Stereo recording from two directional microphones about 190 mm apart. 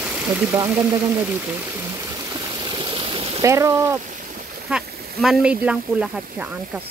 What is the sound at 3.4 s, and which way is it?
Speech, 15° right (ahead or behind).